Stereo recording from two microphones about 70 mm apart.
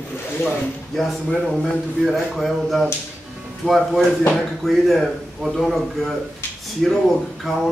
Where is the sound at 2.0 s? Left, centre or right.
Centre.